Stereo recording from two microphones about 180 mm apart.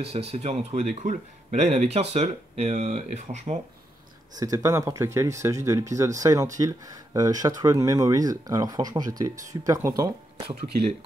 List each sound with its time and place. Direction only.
0.0 s speech: 35° right (ahead or behind)
4.4 s speech: 20° right (ahead or behind)